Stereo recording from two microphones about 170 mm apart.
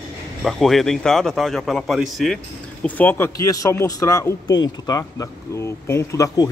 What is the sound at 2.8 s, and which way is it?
Speech, 10° left (ahead or behind).